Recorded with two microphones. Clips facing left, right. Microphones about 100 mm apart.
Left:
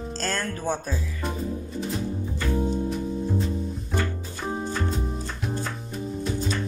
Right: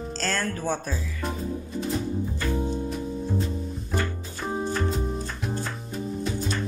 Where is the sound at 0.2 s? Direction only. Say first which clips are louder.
Right 1 dB; 20° left (ahead or behind).